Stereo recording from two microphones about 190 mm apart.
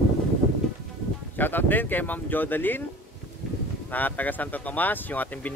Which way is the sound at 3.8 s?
10° left (ahead or behind).